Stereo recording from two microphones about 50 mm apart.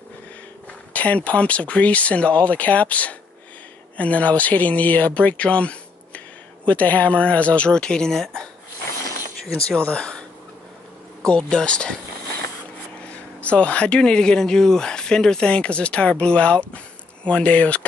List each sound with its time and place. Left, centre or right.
0.9 s speech: left; by 8.5 s centre
9.7 s speech: left
11.2 s speech: centre
13.1 s speech: left